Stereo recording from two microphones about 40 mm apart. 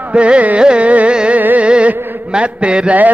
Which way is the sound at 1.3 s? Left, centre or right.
Right.